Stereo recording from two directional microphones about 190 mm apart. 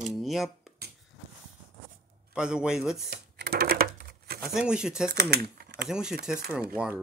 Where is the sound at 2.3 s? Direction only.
5° right (ahead or behind).